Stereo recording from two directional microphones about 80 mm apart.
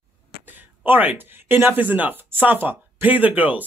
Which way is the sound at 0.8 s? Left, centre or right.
Right.